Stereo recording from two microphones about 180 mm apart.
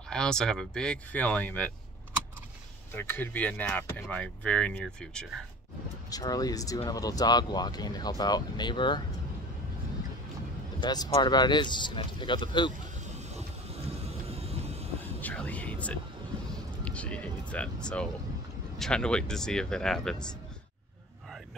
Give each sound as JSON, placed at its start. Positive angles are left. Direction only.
{"t": 0.1, "sound": "speech", "side_deg": 5}
{"t": 2.9, "sound": "speech", "side_deg": 10}
{"t": 6.0, "sound": "speech", "side_deg": 20}
{"t": 10.8, "sound": "speech", "side_deg": 20}
{"t": 13.7, "sound": "vehicle", "side_deg": -35}
{"t": 15.1, "sound": "music", "side_deg": 10}
{"t": 16.8, "sound": "speech", "side_deg": 5}